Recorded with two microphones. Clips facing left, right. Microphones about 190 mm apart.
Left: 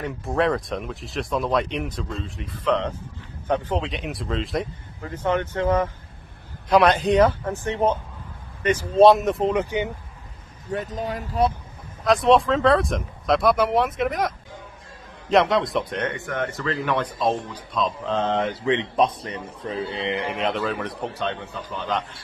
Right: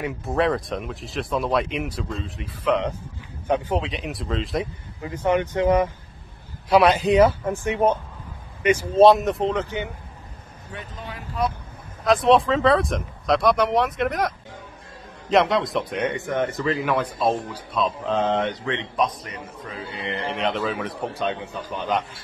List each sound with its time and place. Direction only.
0.0 s speech: centre (ahead or behind)
3.8 s speech: centre (ahead or behind)
5.0 s speech: 15° right (ahead or behind)
8.6 s speech: centre (ahead or behind)
9.6 s speech: 15° left (ahead or behind)
10.7 s speech: 40° left (ahead or behind)
12.0 s speech: centre (ahead or behind)
16.0 s speech: 20° right (ahead or behind)
16.8 s speech: 5° right (ahead or behind)
18.9 s a man's voice: 30° left (ahead or behind)
20.3 s speech: centre (ahead or behind)